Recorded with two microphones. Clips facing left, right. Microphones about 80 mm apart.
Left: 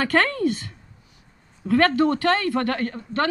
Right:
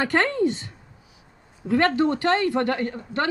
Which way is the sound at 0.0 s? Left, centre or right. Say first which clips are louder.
Even; right.